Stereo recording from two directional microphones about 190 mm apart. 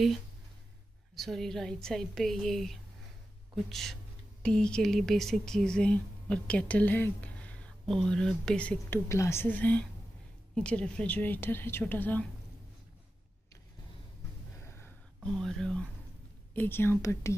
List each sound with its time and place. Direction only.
1.1 s a woman's voice: centre (ahead or behind)
14.6 s a sound: 10° left (ahead or behind)
16.5 s speech: 10° left (ahead or behind)